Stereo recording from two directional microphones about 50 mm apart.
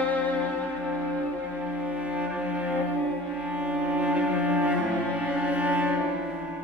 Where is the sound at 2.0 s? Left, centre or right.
Right.